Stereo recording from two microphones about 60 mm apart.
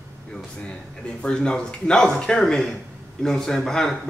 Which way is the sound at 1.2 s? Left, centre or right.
Centre.